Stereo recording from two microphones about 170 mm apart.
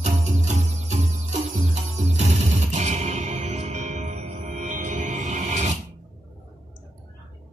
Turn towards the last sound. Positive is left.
turn(degrees=-45)  # may be behind; listen again after turning